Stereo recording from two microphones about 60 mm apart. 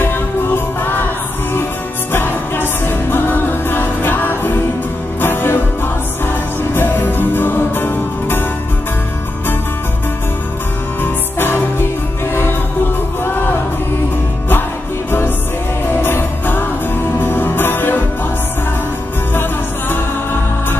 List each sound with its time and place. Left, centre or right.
2.1 s music: left
11.0 s music: left
13.2 s music: left
15.0 s music: left